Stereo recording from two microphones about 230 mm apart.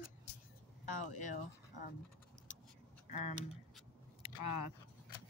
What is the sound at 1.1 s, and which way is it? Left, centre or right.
Speech, left.